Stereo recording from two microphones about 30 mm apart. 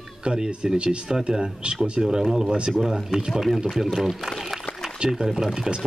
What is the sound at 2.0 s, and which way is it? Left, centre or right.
Speech, right.